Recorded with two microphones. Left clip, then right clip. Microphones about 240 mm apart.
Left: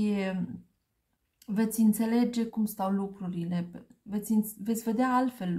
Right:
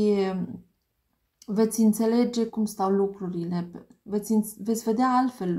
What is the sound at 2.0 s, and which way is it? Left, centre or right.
Speech, left.